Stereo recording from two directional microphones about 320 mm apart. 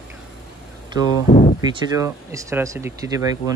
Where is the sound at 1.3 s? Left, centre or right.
Left.